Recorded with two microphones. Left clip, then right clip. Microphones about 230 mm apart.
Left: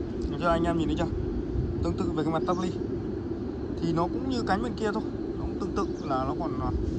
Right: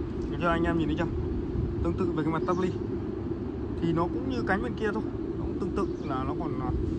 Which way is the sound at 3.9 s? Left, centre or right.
Centre.